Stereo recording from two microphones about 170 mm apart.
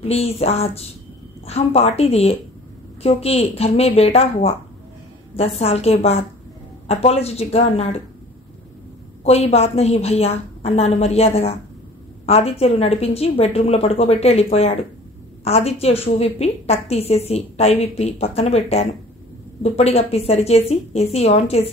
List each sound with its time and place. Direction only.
0.0 s a woman's voice: 35° left (ahead or behind)
5.6 s a woman's voice: 35° left (ahead or behind)
9.2 s a woman's voice: 40° left (ahead or behind)